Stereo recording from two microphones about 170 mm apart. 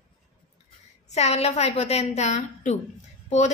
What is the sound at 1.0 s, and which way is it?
A woman's voice, 40° left (ahead or behind).